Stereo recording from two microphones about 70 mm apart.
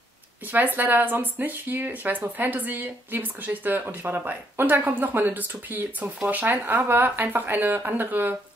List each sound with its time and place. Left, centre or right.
0.5 s speech: right